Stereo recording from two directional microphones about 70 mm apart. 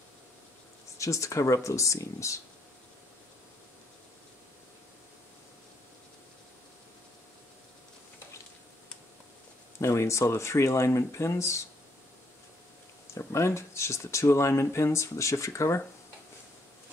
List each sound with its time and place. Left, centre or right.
0.9 s speech: left
9.8 s speech: left
13.3 s speech: left